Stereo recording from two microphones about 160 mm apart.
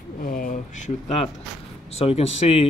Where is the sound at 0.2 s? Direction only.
60° left (ahead or behind); by 1.2 s 45° left (ahead or behind).